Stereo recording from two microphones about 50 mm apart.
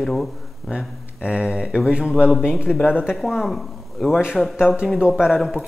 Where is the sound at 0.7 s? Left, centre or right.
Right.